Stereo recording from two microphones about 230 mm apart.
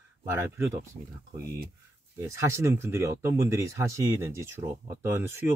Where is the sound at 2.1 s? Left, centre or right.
Centre.